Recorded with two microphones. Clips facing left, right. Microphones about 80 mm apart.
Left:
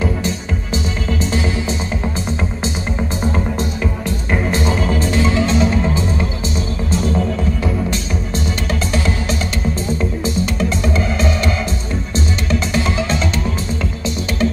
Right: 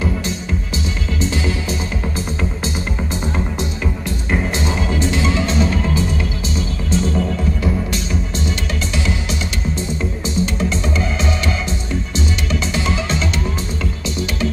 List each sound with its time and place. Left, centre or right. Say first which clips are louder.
4.5 s music: left 3 dB; left
12.4 s music: left 2 dB; left